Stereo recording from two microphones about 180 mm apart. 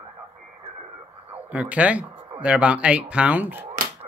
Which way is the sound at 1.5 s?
10° right (ahead or behind).